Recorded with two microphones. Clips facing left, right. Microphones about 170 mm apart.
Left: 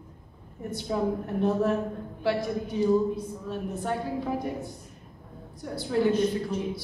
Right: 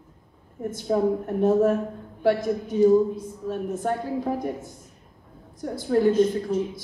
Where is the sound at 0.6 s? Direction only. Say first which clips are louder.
Right 5 dB; 45° right (ahead or behind).